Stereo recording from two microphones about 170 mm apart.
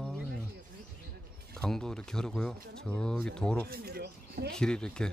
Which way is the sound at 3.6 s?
65° right (ahead or behind).